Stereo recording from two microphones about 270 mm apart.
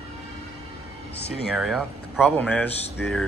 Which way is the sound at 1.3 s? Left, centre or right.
Centre.